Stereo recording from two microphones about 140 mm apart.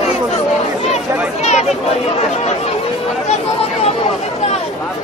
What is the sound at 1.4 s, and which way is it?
Chatter, 55° left (ahead or behind).